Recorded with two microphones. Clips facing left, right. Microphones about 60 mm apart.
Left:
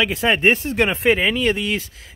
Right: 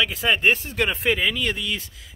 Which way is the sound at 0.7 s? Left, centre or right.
Left.